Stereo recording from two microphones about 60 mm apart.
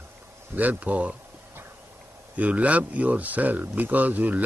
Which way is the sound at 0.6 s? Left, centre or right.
Right.